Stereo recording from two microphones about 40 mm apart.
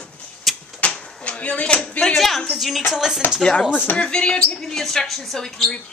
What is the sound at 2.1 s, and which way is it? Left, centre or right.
Speech, centre.